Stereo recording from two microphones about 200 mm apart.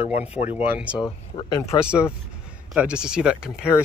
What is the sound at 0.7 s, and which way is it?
Speech, 5° right (ahead or behind).